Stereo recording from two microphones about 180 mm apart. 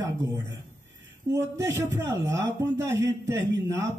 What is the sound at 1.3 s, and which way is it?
A man's voice, 15° right (ahead or behind).